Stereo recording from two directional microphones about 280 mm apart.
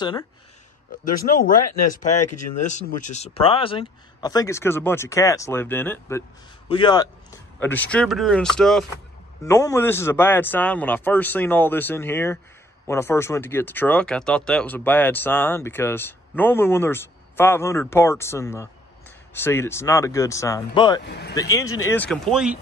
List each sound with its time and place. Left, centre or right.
1.0 s speech: left
1.6 s speech: left
2.6 s speech: left
21.0 s speech: left
21.4 s speech: centre